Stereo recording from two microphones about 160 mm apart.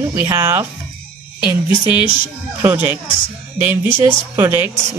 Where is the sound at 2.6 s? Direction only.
15° right (ahead or behind).